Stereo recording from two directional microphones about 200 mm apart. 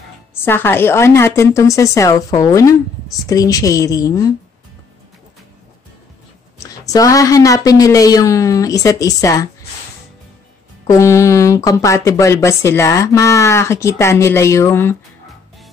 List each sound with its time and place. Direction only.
0.4 s speech: 10° left (ahead or behind)
6.9 s speech: 15° left (ahead or behind)
10.9 s speech: 15° left (ahead or behind)